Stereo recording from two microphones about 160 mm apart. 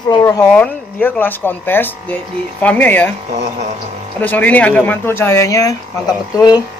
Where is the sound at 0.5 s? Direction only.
10° left (ahead or behind).